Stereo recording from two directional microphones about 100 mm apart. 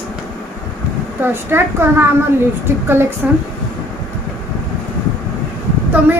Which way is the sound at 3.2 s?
10° right (ahead or behind).